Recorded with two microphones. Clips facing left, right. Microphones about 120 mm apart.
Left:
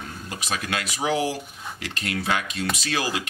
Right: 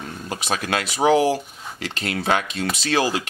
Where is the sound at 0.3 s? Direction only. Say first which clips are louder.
Right 5 dB; 35° right (ahead or behind).